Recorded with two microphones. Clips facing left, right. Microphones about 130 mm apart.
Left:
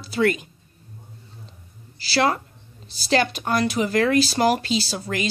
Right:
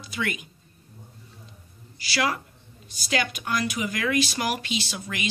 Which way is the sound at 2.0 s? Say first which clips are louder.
Left 6 dB; 30° left (ahead or behind).